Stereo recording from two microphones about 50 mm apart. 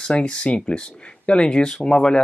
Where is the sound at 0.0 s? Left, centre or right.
Centre.